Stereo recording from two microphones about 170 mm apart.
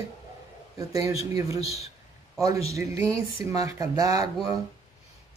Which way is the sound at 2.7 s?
20° right (ahead or behind).